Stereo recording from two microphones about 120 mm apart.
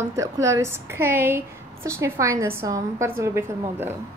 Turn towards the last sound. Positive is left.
turn(degrees=-20)  # may be behind; listen again after turning